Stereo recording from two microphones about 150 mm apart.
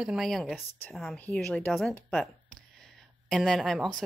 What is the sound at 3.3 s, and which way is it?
Speech, centre (ahead or behind).